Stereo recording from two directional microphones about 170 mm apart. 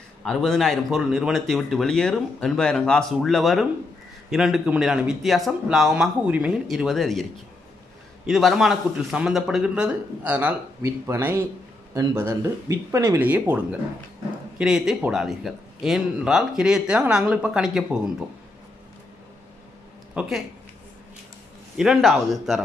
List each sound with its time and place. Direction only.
0.2 s speech: 5° left (ahead or behind)
8.3 s speech: centre (ahead or behind)
20.2 s speech: centre (ahead or behind)
21.7 s speech: centre (ahead or behind)